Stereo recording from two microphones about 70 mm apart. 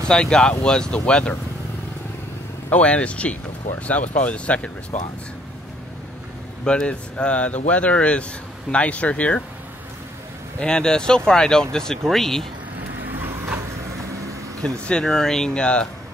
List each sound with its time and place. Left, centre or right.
0.1 s speech: centre
2.7 s speech: centre
6.6 s speech: centre
10.6 s speech: centre
14.6 s speech: centre